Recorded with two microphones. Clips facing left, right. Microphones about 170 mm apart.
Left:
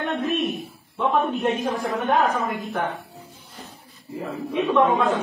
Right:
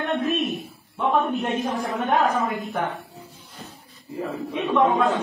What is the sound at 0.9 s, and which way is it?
A man's voice, centre (ahead or behind).